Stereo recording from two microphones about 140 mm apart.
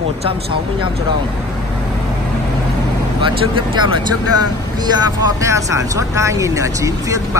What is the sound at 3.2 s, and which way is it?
Speech, 35° right (ahead or behind).